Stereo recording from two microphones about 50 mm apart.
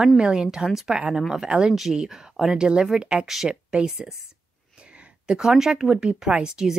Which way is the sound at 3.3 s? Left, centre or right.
Centre.